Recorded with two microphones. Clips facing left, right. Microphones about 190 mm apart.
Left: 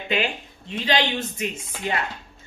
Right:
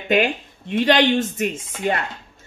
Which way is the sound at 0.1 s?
55° right (ahead or behind).